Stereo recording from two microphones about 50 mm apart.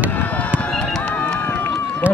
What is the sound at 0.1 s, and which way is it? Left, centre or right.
Run, left.